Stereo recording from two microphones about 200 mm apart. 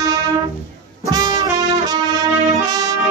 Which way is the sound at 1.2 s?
20° right (ahead or behind).